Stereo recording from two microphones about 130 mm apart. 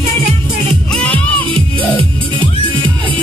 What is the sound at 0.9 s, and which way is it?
Music, 10° left (ahead or behind).